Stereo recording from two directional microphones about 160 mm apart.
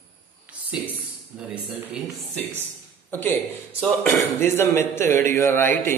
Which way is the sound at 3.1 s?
15° left (ahead or behind).